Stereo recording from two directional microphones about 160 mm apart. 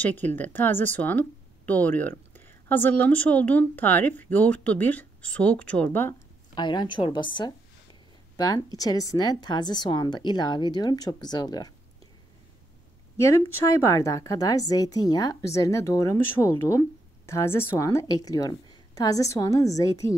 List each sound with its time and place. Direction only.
0.0 s speech: 10° left (ahead or behind)
6.5 s a woman's voice: 30° left (ahead or behind)
13.7 s a woman's voice: 20° left (ahead or behind)